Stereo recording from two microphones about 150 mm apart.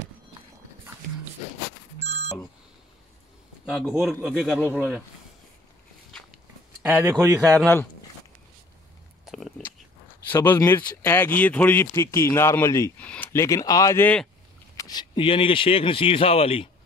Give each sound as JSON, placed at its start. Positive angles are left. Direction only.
{"t": 2.0, "sound": "a sound", "side_deg": -45}
{"t": 3.6, "sound": "a man's voice", "side_deg": 0}
{"t": 4.7, "sound": "speech", "side_deg": -10}
{"t": 6.9, "sound": "speech", "side_deg": -20}
{"t": 9.2, "sound": "a sound", "side_deg": 0}
{"t": 10.3, "sound": "speech", "side_deg": 15}
{"t": 14.8, "sound": "speech", "side_deg": 25}